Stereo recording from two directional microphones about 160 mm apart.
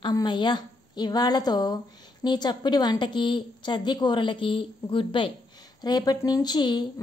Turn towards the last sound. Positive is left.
turn(degrees=25)  # may be behind; listen again after turning